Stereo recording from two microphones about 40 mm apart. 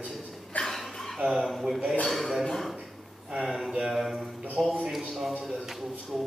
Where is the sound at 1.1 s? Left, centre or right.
Centre.